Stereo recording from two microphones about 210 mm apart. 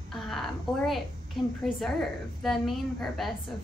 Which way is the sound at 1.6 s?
Centre (ahead or behind).